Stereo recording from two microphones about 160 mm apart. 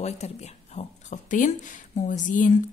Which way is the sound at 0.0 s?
45° left (ahead or behind).